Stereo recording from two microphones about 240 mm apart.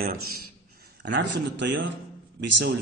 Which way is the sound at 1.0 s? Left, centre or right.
Right.